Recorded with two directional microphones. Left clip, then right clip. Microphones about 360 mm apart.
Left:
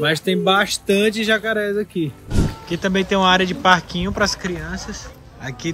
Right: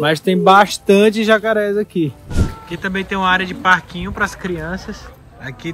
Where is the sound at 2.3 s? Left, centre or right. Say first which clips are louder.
Left 1 dB; centre.